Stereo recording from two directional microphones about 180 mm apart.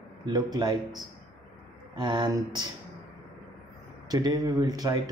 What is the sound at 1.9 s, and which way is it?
Speech, 25° right (ahead or behind).